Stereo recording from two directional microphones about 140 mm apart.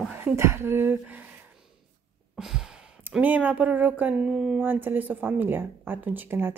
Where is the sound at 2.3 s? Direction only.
5° right (ahead or behind).